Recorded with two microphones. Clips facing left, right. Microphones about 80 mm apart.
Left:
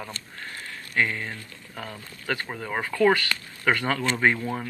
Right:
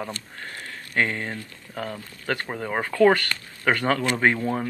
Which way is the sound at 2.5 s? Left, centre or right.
Centre.